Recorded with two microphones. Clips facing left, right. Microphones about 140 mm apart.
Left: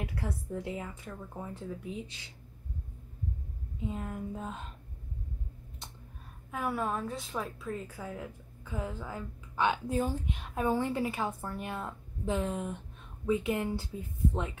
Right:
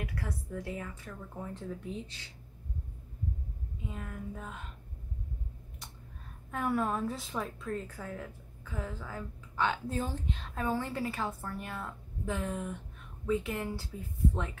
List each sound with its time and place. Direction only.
0.0 s a woman's voice: 25° left (ahead or behind)
3.9 s speech: 25° left (ahead or behind)
6.5 s a woman's voice: 5° left (ahead or behind); by 14.6 s 20° left (ahead or behind)